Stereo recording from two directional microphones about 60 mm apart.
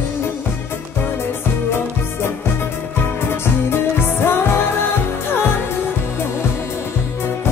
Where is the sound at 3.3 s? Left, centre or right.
Left.